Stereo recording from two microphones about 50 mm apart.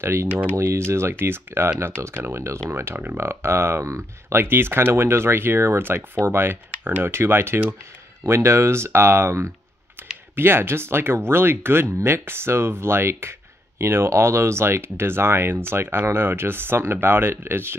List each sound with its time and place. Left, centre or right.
0.0 s speech: right
8.3 s speech: right
10.0 s computer keyboard: right
10.3 s speech: right